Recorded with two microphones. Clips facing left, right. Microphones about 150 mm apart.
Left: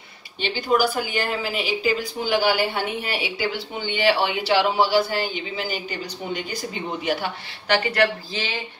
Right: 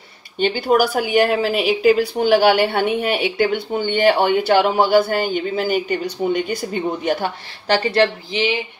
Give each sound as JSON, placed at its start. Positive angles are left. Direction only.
{"t": 0.4, "sound": "a woman's voice", "side_deg": -55}